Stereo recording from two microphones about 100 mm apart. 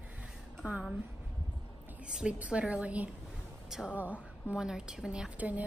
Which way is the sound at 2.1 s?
10° right (ahead or behind).